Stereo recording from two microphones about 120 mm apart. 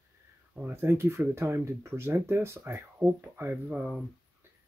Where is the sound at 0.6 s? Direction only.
20° right (ahead or behind).